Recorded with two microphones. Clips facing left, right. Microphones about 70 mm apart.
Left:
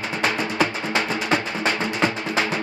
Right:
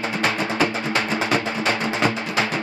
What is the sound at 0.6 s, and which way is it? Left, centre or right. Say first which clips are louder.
Music: even; left.